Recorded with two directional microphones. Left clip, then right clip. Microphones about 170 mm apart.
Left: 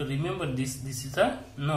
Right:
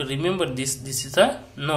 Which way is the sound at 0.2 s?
35° right (ahead or behind).